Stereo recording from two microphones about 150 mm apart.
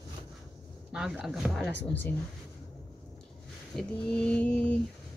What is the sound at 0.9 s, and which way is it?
Speech, 5° right (ahead or behind).